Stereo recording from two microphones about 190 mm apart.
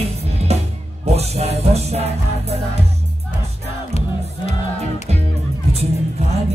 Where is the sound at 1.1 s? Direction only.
35° right (ahead or behind).